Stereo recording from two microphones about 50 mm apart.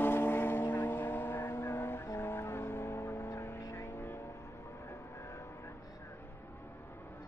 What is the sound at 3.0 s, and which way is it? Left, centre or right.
Vehicle, left.